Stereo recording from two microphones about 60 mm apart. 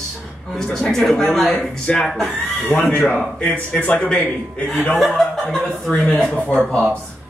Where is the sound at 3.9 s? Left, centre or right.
Centre.